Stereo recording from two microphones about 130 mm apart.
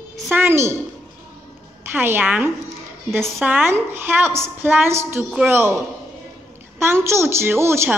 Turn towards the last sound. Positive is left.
turn(degrees=-20)  # may be behind; listen again after turning